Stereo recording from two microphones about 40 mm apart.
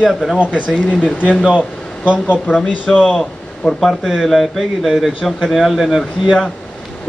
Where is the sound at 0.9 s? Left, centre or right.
Left.